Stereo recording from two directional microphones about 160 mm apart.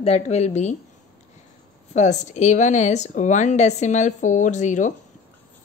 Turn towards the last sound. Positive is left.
turn(degrees=50)  # may be behind; listen again after turning